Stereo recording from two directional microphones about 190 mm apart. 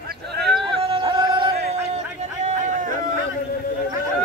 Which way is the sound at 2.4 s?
40° right (ahead or behind).